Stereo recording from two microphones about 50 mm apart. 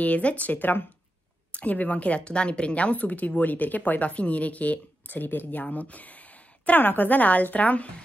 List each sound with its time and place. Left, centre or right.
0.0 s a woman's voice: left
6.8 s a woman's voice: left